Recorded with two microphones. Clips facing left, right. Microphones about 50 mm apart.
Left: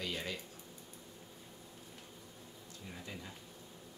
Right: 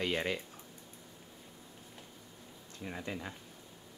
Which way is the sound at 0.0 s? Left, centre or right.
Right.